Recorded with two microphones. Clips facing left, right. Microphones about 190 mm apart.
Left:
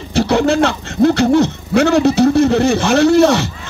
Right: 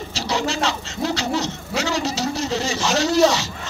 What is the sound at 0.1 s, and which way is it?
Speech, 55° left (ahead or behind).